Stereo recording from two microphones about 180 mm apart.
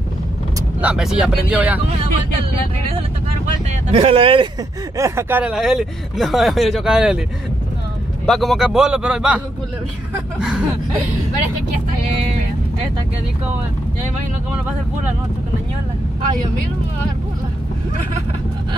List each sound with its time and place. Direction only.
0.7 s speech: 5° right (ahead or behind)
3.9 s speech: 30° right (ahead or behind)
4.9 s speech: 15° right (ahead or behind)
8.3 s speech: centre (ahead or behind)
10.4 s speech: 5° right (ahead or behind)